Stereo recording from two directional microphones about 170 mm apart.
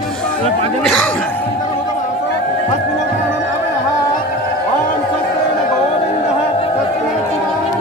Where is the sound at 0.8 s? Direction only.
10° left (ahead or behind).